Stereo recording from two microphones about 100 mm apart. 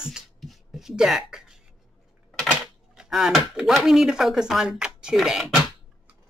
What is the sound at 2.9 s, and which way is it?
Speech, 5° right (ahead or behind).